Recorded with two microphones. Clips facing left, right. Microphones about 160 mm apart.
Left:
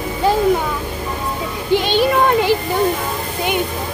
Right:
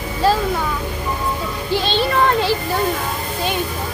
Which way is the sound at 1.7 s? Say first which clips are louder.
Left 5 dB; 15° left (ahead or behind).